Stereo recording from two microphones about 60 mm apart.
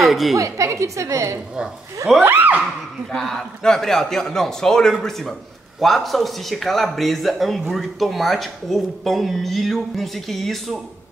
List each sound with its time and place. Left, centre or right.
0.0 s a woman's voice: centre
0.4 s a woman's voice: right
2.2 s a sound: right
3.1 s a man's voice: centre